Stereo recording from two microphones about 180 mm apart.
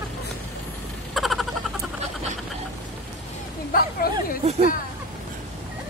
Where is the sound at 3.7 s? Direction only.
55° left (ahead or behind).